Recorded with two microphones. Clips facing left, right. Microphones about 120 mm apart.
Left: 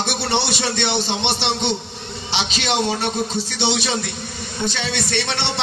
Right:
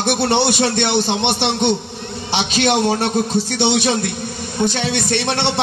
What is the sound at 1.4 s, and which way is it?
A man's voice, 50° right (ahead or behind).